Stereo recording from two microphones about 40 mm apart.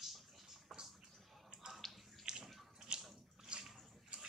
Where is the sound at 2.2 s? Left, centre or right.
Centre.